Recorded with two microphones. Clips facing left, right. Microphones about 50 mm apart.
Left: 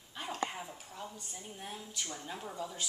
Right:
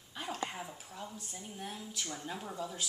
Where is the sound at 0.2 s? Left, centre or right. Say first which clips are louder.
Left 1 dB; centre.